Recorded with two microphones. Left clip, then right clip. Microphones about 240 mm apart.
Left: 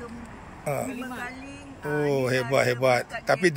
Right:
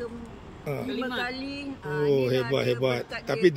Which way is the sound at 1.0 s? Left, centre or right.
Right.